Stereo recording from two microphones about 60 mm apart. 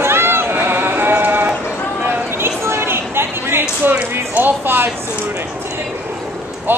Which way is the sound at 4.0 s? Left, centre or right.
Right.